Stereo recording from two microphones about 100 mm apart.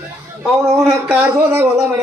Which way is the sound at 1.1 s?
25° right (ahead or behind).